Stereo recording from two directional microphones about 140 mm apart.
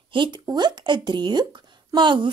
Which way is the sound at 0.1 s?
35° right (ahead or behind).